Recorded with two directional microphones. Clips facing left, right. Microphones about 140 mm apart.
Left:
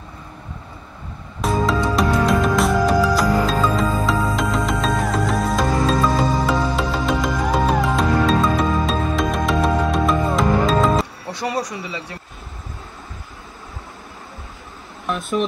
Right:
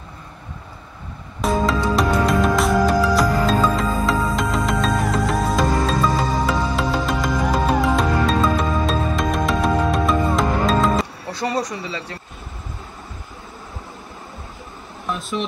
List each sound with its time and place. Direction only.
1.4 s music: centre (ahead or behind)
11.3 s speech: 10° left (ahead or behind)